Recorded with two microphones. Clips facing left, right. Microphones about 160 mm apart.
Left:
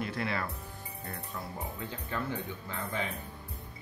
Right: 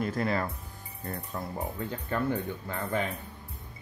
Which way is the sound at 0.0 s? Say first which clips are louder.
Right 5 dB; 45° right (ahead or behind).